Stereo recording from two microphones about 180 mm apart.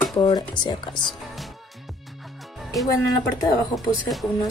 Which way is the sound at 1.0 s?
Centre (ahead or behind).